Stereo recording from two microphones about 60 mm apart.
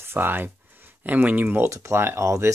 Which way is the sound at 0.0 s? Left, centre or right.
Right.